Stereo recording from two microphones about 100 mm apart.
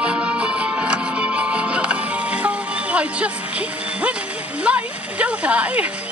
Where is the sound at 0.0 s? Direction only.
10° right (ahead or behind).